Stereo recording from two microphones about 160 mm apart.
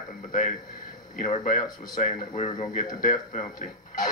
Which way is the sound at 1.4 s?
60° left (ahead or behind).